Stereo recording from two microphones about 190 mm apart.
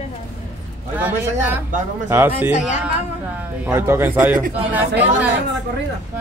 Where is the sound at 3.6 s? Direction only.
10° right (ahead or behind).